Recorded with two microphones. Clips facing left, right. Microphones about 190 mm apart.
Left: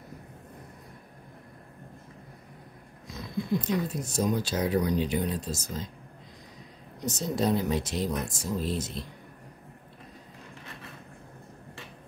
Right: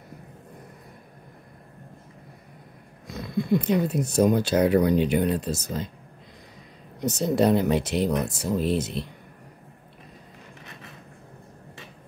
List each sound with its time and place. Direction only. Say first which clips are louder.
3.1 s speech: right 6 dB; 60° right (ahead or behind)
7.0 s speech: right 7 dB; 65° right (ahead or behind)